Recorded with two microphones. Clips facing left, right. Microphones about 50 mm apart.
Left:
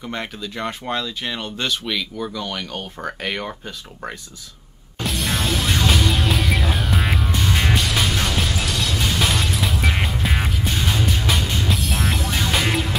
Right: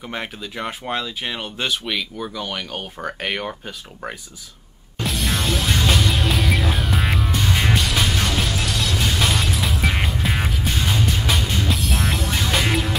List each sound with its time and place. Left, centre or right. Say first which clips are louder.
0.0 s speech: left 1 dB; centre
5.0 s music: even; centre